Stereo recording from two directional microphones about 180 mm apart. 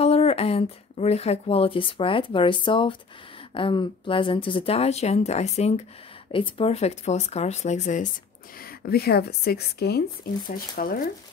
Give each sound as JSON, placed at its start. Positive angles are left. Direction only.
{"t": 0.0, "sound": "speech", "side_deg": 35}
{"t": 8.8, "sound": "speech", "side_deg": 60}